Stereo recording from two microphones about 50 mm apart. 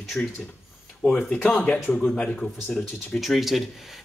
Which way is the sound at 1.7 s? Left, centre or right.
Left.